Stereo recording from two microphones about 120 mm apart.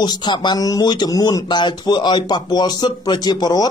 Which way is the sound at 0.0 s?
40° left (ahead or behind).